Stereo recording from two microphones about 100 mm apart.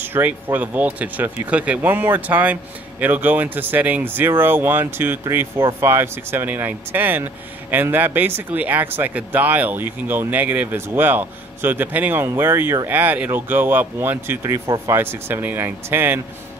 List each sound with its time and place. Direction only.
0.0 s speech: 20° right (ahead or behind)